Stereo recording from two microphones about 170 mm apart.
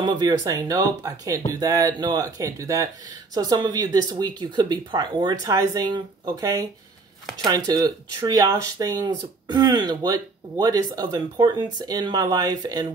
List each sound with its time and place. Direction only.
0.0 s speech: 25° right (ahead or behind)